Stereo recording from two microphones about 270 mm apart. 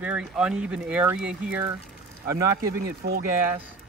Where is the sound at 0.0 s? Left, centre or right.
Centre.